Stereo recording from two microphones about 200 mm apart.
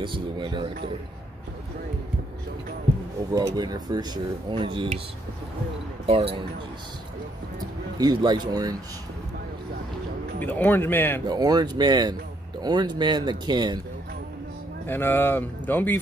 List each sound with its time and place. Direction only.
0.0 s speech: 25° right (ahead or behind)
3.3 s speech: 20° right (ahead or behind)
6.0 s speech: 30° right (ahead or behind)
8.0 s speech: 20° right (ahead or behind)
10.4 s speech: 10° left (ahead or behind)
11.2 s speech: 20° right (ahead or behind)
14.9 s speech: 10° left (ahead or behind)